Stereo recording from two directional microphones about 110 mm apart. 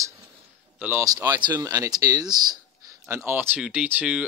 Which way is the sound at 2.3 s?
40° right (ahead or behind).